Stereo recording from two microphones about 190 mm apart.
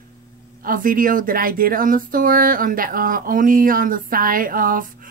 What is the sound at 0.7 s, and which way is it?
Speech, 45° right (ahead or behind).